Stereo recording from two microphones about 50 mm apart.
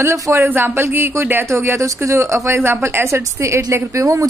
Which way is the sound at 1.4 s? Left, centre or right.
Right.